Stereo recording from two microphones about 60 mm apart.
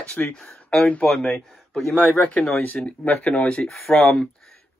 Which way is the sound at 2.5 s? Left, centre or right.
Left.